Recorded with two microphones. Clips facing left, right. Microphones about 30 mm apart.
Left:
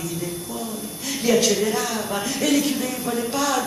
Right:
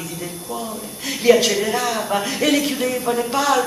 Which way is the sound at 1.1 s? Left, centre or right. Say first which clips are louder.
Right 4 dB; right.